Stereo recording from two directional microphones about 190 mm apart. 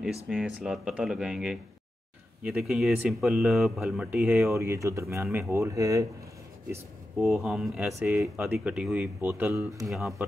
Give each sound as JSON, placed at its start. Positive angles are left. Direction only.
{"t": 0.0, "sound": "speech", "side_deg": -5}
{"t": 7.2, "sound": "speech", "side_deg": 0}
{"t": 9.8, "sound": "speech", "side_deg": 0}